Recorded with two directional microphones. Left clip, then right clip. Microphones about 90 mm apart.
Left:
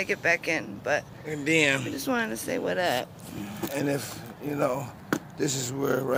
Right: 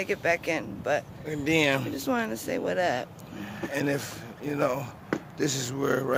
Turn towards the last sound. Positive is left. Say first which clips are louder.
# even
turn(degrees=-15)  # may be behind; listen again after turning